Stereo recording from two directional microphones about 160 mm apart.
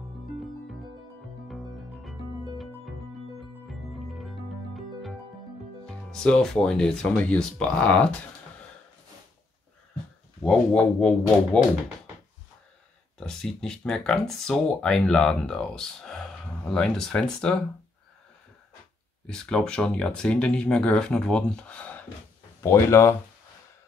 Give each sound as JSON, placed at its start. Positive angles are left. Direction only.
{"t": 1.5, "sound": "music", "side_deg": 0}
{"t": 5.9, "sound": "speech", "side_deg": 5}
{"t": 10.4, "sound": "speech", "side_deg": 5}
{"t": 13.2, "sound": "speech", "side_deg": 5}
{"t": 19.2, "sound": "speech", "side_deg": 5}